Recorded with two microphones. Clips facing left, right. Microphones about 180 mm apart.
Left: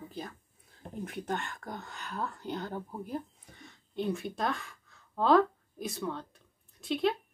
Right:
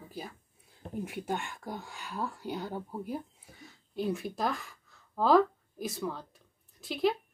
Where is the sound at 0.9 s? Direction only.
5° right (ahead or behind).